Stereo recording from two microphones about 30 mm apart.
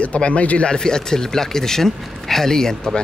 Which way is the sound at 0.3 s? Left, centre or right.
Left.